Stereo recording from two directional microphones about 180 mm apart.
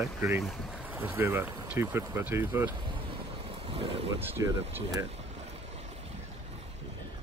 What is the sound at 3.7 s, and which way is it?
Wind noise, 30° right (ahead or behind).